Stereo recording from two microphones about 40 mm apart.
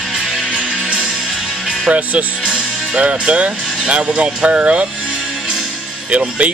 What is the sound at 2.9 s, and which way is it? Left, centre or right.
Speech, right.